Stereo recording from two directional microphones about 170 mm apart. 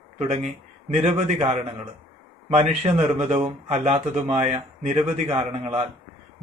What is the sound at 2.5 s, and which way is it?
Speech, 40° right (ahead or behind).